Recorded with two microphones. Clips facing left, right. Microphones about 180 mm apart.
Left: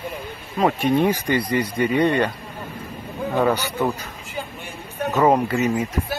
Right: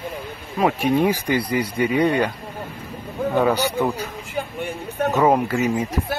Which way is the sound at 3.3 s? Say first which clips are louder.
Right 1 dB; 10° right (ahead or behind).